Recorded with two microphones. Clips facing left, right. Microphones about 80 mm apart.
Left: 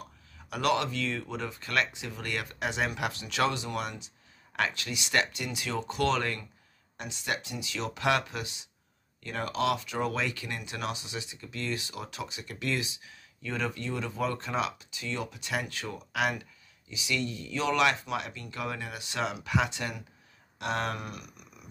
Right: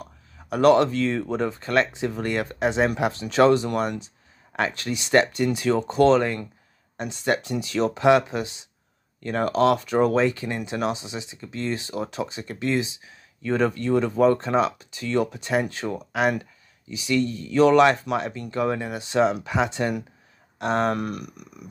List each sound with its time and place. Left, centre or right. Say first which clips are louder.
0.0 s speech: right 5 dB; right
4.0 s a sound: right 4 dB; right
4.7 s speech: right 9 dB; right
7.0 s speech: right 10 dB; right
8.0 s speech: right 9 dB; right
9.2 s speech: right 10 dB; right
13.4 s speech: right 11 dB; right
20.9 s speech: right 11 dB; right